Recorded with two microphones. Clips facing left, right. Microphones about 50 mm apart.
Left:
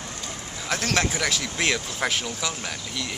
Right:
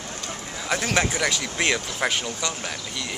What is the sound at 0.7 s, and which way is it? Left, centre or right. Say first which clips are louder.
Speech: right 1 dB; centre.